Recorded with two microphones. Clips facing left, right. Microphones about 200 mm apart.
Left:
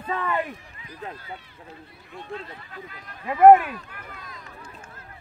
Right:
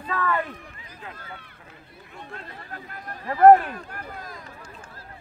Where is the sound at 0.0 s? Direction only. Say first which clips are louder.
Even; 20° left (ahead or behind).